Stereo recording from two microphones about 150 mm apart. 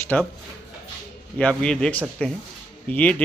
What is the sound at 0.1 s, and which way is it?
Speech, 10° left (ahead or behind).